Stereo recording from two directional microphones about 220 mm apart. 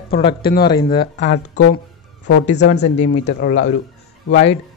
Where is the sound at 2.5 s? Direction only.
50° left (ahead or behind).